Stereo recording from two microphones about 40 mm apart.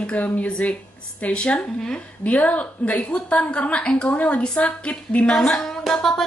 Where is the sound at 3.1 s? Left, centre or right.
Left.